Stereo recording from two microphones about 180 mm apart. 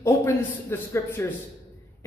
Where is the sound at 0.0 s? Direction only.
15° left (ahead or behind).